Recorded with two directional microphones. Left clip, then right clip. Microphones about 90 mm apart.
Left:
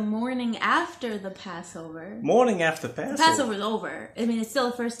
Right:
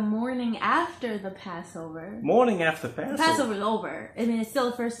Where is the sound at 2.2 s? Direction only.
35° left (ahead or behind).